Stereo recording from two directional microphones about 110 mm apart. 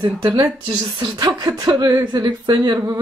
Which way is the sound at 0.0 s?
40° right (ahead or behind).